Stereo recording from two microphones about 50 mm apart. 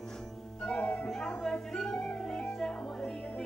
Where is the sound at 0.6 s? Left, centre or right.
Left.